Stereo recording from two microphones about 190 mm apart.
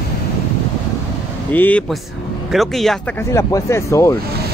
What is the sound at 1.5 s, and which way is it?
Speech, 10° left (ahead or behind).